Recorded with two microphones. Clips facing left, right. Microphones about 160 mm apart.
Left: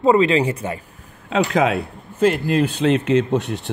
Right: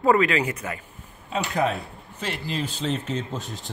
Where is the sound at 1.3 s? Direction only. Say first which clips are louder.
Left 7 dB; 90° left.